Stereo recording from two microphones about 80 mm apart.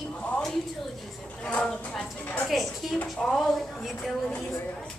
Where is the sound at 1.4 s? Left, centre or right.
Centre.